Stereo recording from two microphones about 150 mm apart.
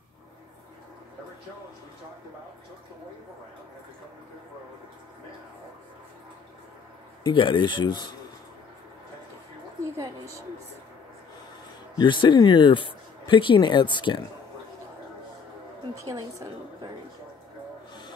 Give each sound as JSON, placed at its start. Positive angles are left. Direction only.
{"t": 7.2, "sound": "speech", "side_deg": 30}
{"t": 9.9, "sound": "a woman's voice", "side_deg": -20}
{"t": 12.0, "sound": "speech", "side_deg": 30}
{"t": 16.0, "sound": "a woman's voice", "side_deg": -20}